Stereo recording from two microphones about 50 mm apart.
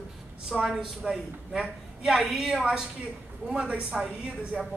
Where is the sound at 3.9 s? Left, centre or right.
Centre.